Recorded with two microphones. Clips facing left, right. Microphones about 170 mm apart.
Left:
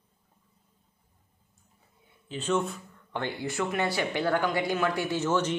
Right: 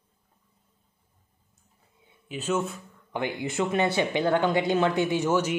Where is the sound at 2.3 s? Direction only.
10° right (ahead or behind).